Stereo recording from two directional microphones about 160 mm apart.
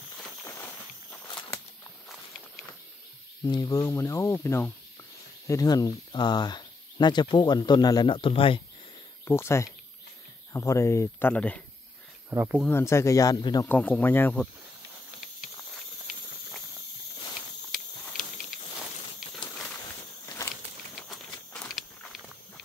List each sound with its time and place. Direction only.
0.4 s a sound: 15° left (ahead or behind)
3.4 s speech: 25° left (ahead or behind)
9.2 s speech: 15° left (ahead or behind)
12.3 s speech: 10° right (ahead or behind)
12.6 s speech: 15° left (ahead or behind)
13.7 s speech: 10° left (ahead or behind)
17.6 s a sound: centre (ahead or behind)
20.2 s walk: 20° left (ahead or behind)
20.9 s walk: centre (ahead or behind)